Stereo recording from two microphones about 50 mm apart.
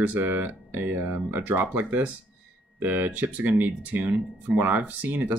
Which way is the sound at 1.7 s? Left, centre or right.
Right.